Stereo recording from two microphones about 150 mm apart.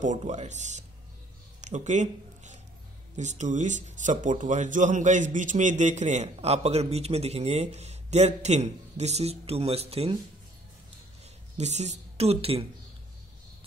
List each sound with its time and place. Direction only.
0.0 s speech: 50° right (ahead or behind)
1.6 s a sound: 50° right (ahead or behind)
3.2 s speech: 50° right (ahead or behind)
11.5 s speech: 50° right (ahead or behind)